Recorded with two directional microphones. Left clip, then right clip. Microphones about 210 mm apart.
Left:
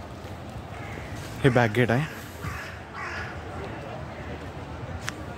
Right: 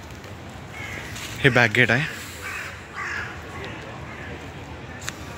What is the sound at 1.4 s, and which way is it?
Speech, 10° left (ahead or behind).